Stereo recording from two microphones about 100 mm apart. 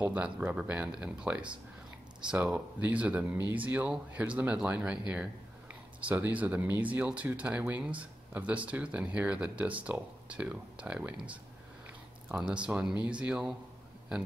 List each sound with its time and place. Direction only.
0.0 s speech: 15° right (ahead or behind)
12.6 s speech: 10° right (ahead or behind)